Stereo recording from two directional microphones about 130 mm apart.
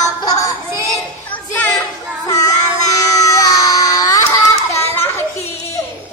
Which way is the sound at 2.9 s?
25° left (ahead or behind).